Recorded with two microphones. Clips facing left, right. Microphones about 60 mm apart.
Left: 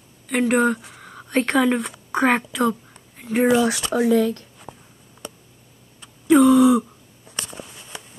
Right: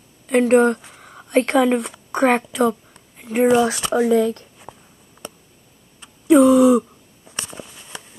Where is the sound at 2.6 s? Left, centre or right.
Centre.